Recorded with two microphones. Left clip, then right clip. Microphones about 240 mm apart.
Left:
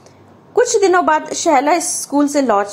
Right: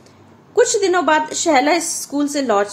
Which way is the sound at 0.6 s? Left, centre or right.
Centre.